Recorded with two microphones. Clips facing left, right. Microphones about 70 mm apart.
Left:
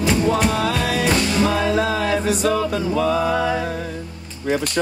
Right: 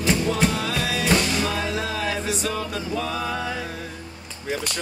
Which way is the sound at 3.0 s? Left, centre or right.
Left.